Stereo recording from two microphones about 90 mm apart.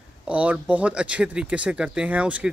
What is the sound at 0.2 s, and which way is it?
Speech, 15° right (ahead or behind).